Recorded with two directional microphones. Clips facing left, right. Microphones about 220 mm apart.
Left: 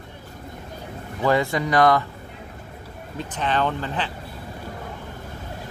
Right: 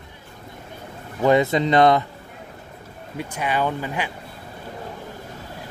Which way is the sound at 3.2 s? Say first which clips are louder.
Even; 10° right (ahead or behind).